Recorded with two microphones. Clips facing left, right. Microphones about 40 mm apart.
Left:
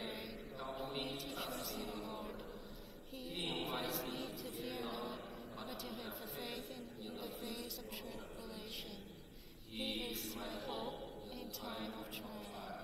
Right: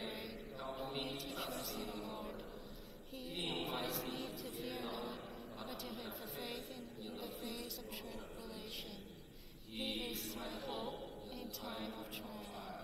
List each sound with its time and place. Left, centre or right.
0.0 s mantra: centre
2.0 s a woman's voice: centre
3.3 s a man's voice: centre
9.8 s a woman's voice: centre